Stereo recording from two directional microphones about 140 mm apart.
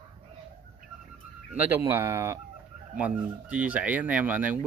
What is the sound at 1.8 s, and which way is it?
Speech, 20° right (ahead or behind).